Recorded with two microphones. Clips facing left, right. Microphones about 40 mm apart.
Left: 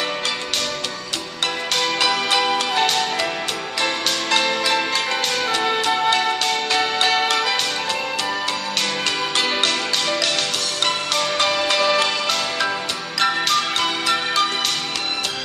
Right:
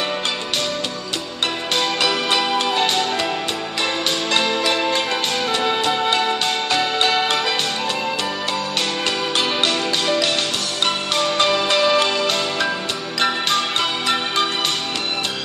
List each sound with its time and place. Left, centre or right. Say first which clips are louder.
1.8 s music: even; centre
9.4 s music: right 1 dB; centre